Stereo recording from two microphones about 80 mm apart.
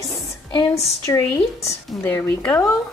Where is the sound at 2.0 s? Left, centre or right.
Left.